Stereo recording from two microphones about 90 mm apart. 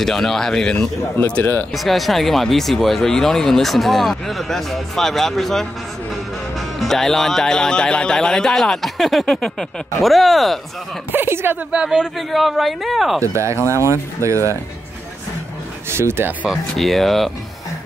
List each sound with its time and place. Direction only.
0.0 s speech: 5° left (ahead or behind)
1.1 s speech: 20° left (ahead or behind)
1.7 s speech: centre (ahead or behind)
6.8 s speech: 5° left (ahead or behind)
11.1 s speech: 25° right (ahead or behind)
11.7 s speech: 10° right (ahead or behind)
13.2 s speech: 35° right (ahead or behind)
15.9 s speech: 30° right (ahead or behind)
16.4 s speech: centre (ahead or behind)